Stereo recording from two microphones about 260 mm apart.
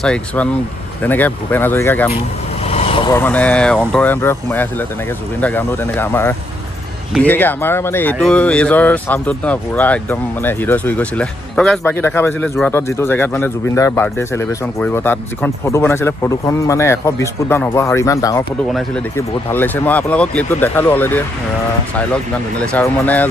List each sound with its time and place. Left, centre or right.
0.0 s speech: centre
2.6 s vehicle: left
3.2 s speech: centre
18.7 s speech: centre
22.7 s speech: centre